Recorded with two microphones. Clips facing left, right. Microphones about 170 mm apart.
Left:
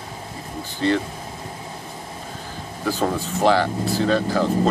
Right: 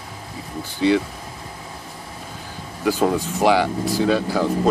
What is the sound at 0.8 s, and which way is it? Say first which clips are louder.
Speech: right 3 dB; 10° right (ahead or behind).